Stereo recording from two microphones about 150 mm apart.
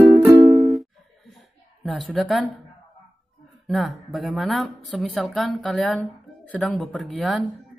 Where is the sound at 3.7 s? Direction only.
Centre (ahead or behind).